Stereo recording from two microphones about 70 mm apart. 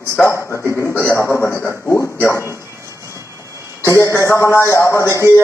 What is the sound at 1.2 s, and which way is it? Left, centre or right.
Speech, left.